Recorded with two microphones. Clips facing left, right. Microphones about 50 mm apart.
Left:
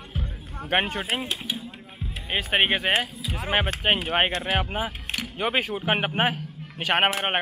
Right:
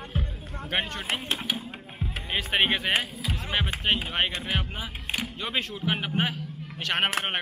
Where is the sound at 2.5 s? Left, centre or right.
Centre.